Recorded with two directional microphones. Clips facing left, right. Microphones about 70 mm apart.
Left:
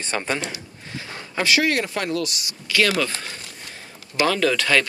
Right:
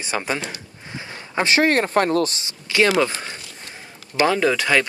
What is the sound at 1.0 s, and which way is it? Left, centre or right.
Speech, right.